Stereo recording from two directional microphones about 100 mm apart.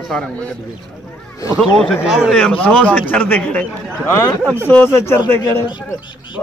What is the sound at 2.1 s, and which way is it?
Speech, centre (ahead or behind).